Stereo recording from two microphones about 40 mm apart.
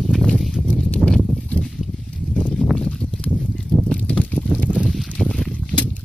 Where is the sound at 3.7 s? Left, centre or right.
Left.